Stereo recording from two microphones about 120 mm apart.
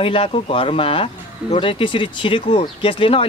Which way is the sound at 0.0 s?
50° left (ahead or behind).